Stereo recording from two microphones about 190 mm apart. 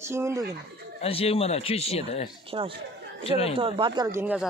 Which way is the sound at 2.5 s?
25° right (ahead or behind).